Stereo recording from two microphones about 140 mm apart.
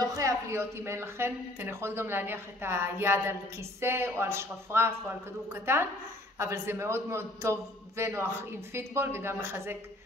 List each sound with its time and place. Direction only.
0.0 s a man's voice: 25° right (ahead or behind)